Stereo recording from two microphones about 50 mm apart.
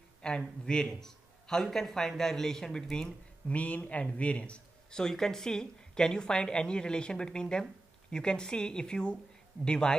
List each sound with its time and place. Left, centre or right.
0.2 s a man's voice: centre
3.4 s speech: left
4.9 s a woman's voice: centre